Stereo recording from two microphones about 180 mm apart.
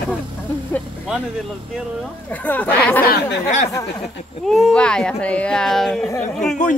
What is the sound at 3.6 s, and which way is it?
Speech, 15° left (ahead or behind).